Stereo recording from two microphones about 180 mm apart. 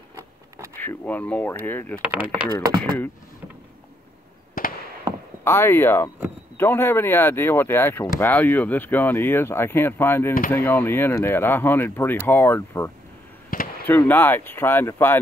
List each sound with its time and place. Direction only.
0.7 s speech: 10° left (ahead or behind)
2.0 s speech: 10° right (ahead or behind)
4.6 s fireworks: 55° left (ahead or behind)
5.4 s speech: 15° left (ahead or behind)
13.5 s a sound: 50° left (ahead or behind)
13.8 s speech: 10° left (ahead or behind)